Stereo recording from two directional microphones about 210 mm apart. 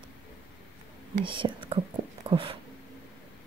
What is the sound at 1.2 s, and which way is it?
Whispering, 25° right (ahead or behind).